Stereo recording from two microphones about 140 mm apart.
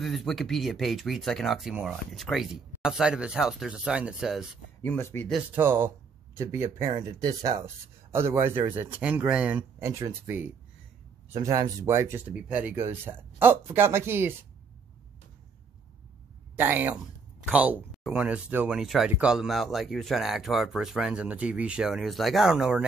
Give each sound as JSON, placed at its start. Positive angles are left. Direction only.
{"t": 0.0, "sound": "speech", "side_deg": 0}
{"t": 4.8, "sound": "speech", "side_deg": 15}
{"t": 5.5, "sound": "speech", "side_deg": -15}
{"t": 11.3, "sound": "speech", "side_deg": -25}
{"t": 12.4, "sound": "speech", "side_deg": -10}
{"t": 16.5, "sound": "speech", "side_deg": -15}